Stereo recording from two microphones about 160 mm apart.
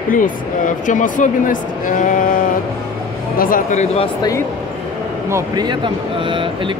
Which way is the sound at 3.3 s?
60° left (ahead or behind).